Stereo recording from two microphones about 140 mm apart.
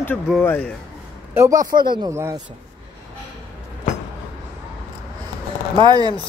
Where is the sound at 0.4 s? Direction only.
10° left (ahead or behind).